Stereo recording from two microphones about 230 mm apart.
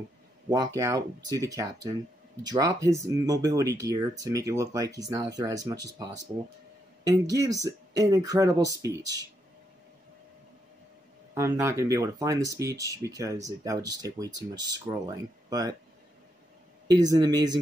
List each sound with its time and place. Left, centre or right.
0.5 s speech: centre
7.1 s speech: centre
11.3 s speech: centre
16.8 s speech: centre